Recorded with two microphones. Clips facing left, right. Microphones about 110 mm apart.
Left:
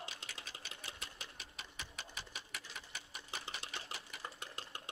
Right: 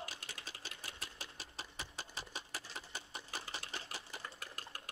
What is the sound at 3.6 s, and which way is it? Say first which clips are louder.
Sewing machine: even; 25° left (ahead or behind).